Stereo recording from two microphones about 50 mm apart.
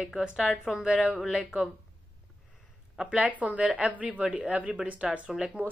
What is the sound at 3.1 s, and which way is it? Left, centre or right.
Speech, right.